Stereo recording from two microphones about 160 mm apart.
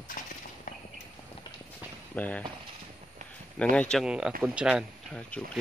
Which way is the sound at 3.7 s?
5° left (ahead or behind).